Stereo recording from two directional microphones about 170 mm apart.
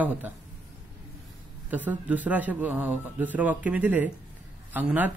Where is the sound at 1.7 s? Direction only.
10° right (ahead or behind).